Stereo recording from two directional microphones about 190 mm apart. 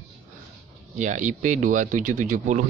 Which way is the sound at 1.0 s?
40° right (ahead or behind).